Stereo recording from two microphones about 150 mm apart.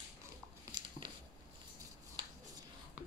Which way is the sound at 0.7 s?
30° right (ahead or behind).